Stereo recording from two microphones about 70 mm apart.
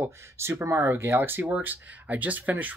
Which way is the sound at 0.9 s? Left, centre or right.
Right.